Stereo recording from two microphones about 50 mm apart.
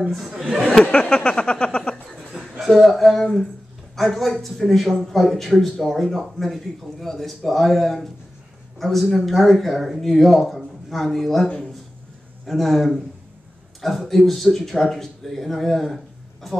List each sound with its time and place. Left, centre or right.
0.8 s a sound: left
2.6 s speech: centre
11.4 s speech: centre
12.4 s speech: centre